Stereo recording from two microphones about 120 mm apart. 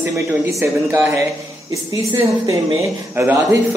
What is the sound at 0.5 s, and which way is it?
Speech, 25° right (ahead or behind).